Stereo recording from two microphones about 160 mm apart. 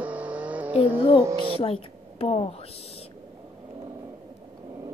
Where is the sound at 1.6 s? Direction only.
35° left (ahead or behind).